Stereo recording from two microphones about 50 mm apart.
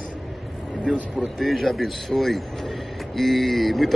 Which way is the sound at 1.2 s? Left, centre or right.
Centre.